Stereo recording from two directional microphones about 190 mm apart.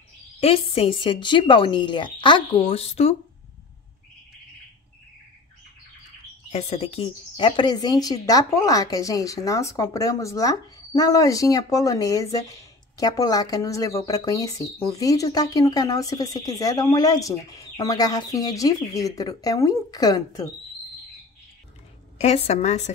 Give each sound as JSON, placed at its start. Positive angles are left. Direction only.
{"t": 0.4, "sound": "speech", "side_deg": 30}
{"t": 6.5, "sound": "speech", "side_deg": 30}
{"t": 22.2, "sound": "a woman's voice", "side_deg": 35}